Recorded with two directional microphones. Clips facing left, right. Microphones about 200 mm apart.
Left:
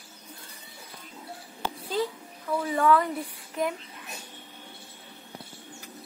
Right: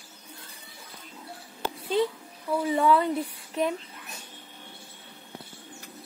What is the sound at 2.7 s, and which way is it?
Speech, 25° right (ahead or behind).